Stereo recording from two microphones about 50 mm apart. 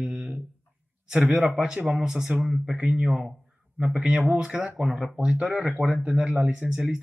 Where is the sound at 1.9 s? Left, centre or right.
Centre.